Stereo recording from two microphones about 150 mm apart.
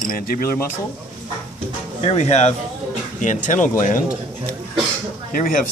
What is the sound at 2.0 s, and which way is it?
Speech, 45° left (ahead or behind).